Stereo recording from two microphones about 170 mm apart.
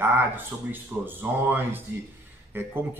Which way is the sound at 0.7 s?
10° right (ahead or behind).